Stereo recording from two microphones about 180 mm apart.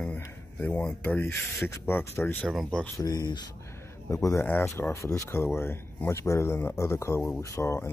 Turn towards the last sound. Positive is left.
turn(degrees=15)  # may be behind; listen again after turning